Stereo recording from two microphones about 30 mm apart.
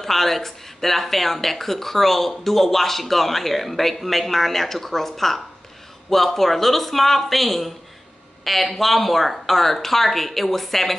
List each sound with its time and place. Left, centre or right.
0.0 s speech: centre